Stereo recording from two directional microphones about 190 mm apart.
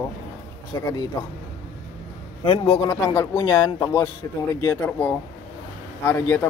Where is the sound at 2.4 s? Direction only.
30° left (ahead or behind).